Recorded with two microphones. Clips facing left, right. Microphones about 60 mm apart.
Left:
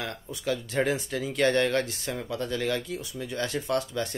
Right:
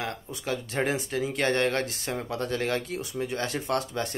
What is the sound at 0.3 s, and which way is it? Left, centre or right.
Speech, right.